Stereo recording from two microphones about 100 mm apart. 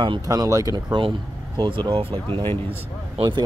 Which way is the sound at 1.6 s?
50° right (ahead or behind).